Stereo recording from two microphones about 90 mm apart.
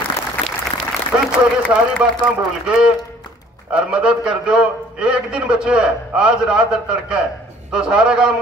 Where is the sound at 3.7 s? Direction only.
10° right (ahead or behind).